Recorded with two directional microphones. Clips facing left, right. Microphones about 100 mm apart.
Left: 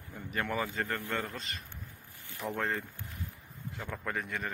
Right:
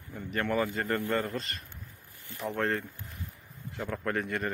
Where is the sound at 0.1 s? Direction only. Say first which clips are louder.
Right 4 dB; 5° left (ahead or behind).